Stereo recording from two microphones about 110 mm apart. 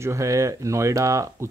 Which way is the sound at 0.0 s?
30° right (ahead or behind).